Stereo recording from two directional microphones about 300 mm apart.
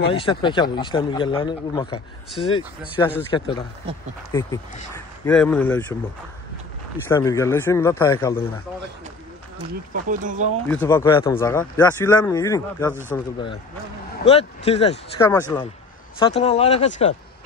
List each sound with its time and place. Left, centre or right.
0.1 s speech: centre
7.1 s speech: centre
10.0 s speech: right
10.7 s speech: centre
14.2 s speech: left
15.2 s speech: centre